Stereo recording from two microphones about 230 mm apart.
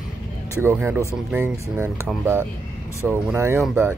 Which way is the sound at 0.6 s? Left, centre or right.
Centre.